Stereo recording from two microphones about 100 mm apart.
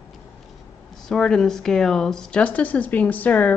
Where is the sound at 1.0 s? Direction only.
5° left (ahead or behind).